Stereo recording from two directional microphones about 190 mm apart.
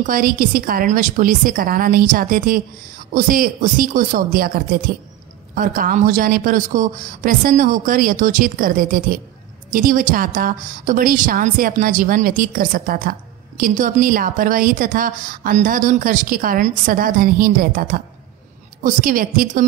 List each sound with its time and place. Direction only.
0.0 s a woman's voice: 45° right (ahead or behind)